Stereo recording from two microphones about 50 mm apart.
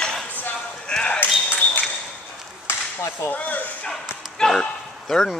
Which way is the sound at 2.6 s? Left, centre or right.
Left.